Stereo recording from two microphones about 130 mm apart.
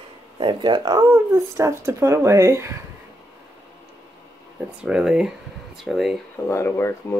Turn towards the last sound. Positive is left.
turn(degrees=20)  # may be behind; listen again after turning